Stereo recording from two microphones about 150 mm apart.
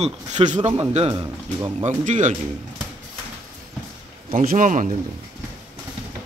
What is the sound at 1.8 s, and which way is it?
Speech, 50° right (ahead or behind).